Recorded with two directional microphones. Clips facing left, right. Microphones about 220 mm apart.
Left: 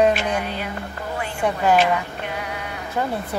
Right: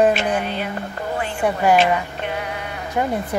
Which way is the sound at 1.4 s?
10° right (ahead or behind).